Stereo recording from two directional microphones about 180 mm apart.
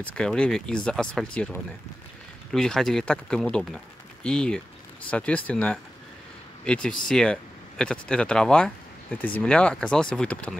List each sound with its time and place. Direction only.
0.0 s speech: 5° left (ahead or behind)